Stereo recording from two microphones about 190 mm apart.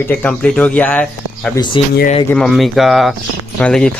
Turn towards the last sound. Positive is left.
turn(degrees=5)  # may be behind; listen again after turning